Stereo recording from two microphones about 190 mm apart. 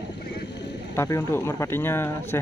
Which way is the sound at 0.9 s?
15° left (ahead or behind).